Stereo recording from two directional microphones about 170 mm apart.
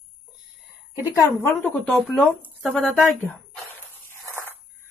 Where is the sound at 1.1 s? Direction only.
20° left (ahead or behind).